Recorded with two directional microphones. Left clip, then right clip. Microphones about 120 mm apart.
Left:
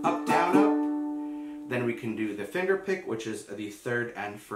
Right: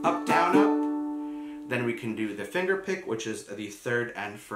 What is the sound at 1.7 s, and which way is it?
Speech, 5° right (ahead or behind).